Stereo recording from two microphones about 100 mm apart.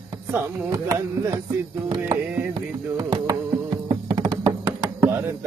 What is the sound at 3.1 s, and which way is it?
Music, 40° right (ahead or behind).